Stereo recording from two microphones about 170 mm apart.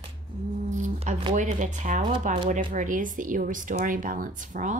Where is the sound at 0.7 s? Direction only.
45° right (ahead or behind).